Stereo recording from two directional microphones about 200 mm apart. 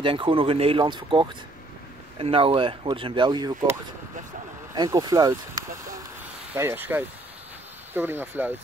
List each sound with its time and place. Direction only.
0.0 s speech: 25° right (ahead or behind)
4.7 s speech: 20° right (ahead or behind)